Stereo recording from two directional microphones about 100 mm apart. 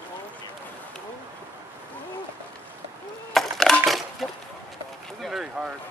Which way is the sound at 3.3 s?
Centre (ahead or behind).